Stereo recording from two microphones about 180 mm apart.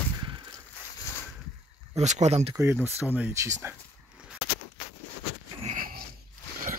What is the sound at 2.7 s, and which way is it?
Speech, 10° right (ahead or behind).